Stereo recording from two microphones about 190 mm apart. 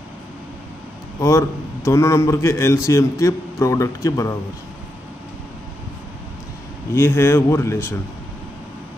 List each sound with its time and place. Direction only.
1.2 s a man's voice: 15° left (ahead or behind)
7.0 s a man's voice: 15° left (ahead or behind)